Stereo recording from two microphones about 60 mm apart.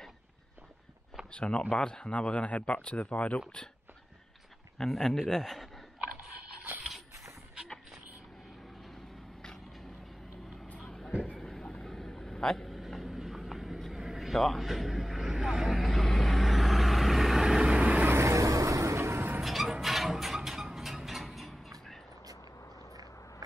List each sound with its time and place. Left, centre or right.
1.3 s speech: centre
4.7 s a man's voice: centre
10.8 s vehicle: centre
18.2 s vehicle: right
19.4 s a sound: centre